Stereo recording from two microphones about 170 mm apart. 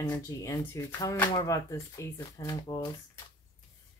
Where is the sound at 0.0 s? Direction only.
20° left (ahead or behind).